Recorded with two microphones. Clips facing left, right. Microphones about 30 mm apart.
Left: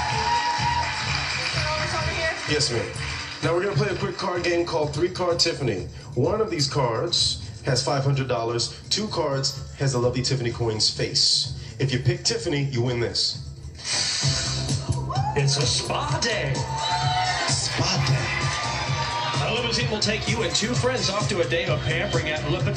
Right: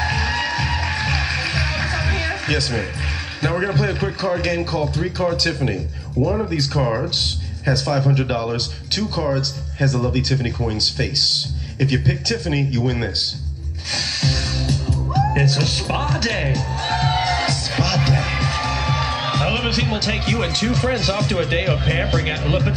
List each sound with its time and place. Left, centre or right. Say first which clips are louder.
0.0 s music: right 1 dB; right
3.4 s speech: right 3 dB; right
6.8 s speech: right 1 dB; right
13.9 s music: right 4 dB; right
22.1 s speech: right 4 dB; right